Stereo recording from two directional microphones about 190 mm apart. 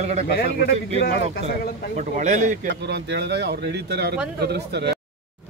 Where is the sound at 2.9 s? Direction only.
65° right (ahead or behind).